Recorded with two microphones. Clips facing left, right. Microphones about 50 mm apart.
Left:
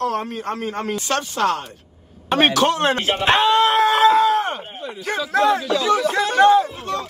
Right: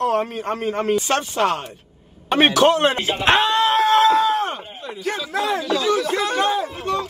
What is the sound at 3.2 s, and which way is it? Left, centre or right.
Screaming, centre.